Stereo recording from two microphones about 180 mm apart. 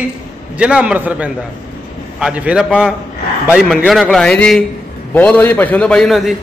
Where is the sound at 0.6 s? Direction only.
5° right (ahead or behind).